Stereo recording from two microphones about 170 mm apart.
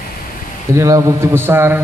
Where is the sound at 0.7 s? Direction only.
20° right (ahead or behind).